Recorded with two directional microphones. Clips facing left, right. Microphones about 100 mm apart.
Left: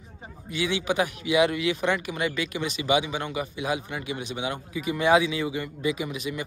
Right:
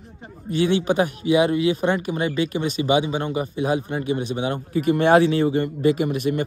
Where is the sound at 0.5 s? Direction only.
45° right (ahead or behind).